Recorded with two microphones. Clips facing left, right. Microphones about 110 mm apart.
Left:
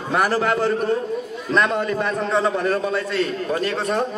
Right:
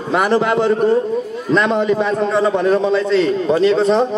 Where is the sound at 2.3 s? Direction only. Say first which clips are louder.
Right 5 dB; centre (ahead or behind).